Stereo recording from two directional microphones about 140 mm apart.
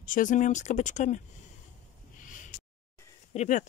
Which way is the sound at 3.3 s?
55° left (ahead or behind).